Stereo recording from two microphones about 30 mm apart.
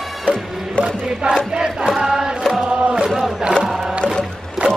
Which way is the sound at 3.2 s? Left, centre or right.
Right.